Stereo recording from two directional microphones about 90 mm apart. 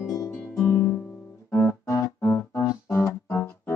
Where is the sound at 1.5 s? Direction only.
30° left (ahead or behind).